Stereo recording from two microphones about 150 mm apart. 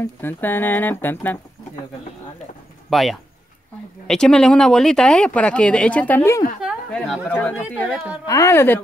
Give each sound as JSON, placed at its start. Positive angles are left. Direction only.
{"t": 0.0, "sound": "speech", "side_deg": 15}
{"t": 2.9, "sound": "speech", "side_deg": 0}
{"t": 6.6, "sound": "a sound", "side_deg": 5}
{"t": 7.3, "sound": "speech", "side_deg": 0}
{"t": 8.3, "sound": "speech", "side_deg": 20}